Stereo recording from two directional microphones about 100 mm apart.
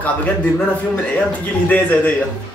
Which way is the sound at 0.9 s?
15° left (ahead or behind).